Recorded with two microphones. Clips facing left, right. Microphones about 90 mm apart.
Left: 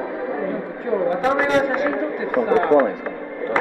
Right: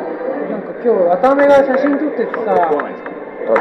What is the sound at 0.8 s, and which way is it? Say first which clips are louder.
Speech: right 9 dB; 15° right (ahead or behind).